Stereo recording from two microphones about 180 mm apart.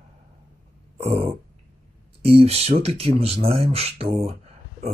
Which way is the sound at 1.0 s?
30° right (ahead or behind).